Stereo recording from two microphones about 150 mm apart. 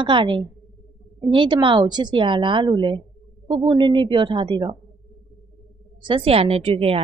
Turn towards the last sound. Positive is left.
turn(degrees=-40)  # may be behind; listen again after turning